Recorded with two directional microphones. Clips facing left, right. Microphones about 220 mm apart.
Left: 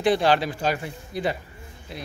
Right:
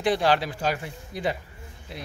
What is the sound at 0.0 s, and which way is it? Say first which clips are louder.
Speech: left 2 dB; 10° right (ahead or behind).